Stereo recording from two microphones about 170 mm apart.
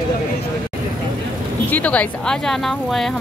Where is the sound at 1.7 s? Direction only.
10° left (ahead or behind).